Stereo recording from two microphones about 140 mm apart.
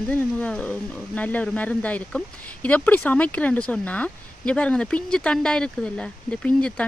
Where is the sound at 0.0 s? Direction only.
10° left (ahead or behind).